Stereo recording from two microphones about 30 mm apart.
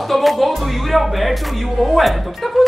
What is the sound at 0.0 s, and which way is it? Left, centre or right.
Speech, centre.